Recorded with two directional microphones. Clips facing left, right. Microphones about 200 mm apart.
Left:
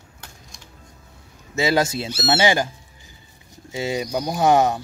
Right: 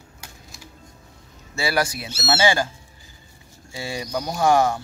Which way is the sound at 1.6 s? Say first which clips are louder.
Left 4 dB; 20° left (ahead or behind).